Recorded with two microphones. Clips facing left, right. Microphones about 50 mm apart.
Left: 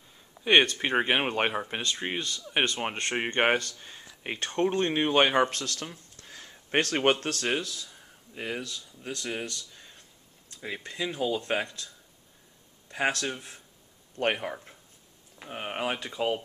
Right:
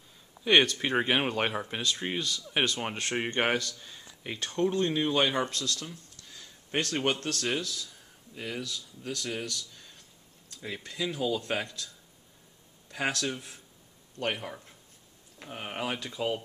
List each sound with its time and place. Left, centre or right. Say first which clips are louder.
0.4 s speech: left 1 dB; centre
4.4 s speech: left 1 dB; left
8.6 s speech: right 1 dB; centre
12.9 s speech: left 2 dB; centre
14.1 s speech: left 5 dB; left
15.3 s speech: left 3 dB; centre